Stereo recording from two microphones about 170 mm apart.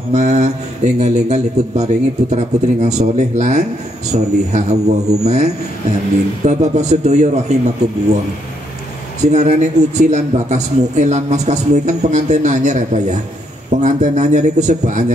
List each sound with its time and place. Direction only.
0.1 s a man's voice: 45° right (ahead or behind)
9.2 s speech: 40° right (ahead or behind)